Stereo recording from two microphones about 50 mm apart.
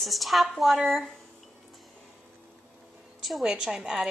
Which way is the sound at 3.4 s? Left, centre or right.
Centre.